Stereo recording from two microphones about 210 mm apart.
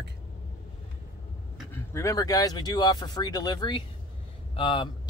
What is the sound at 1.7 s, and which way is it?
Speech, 15° left (ahead or behind).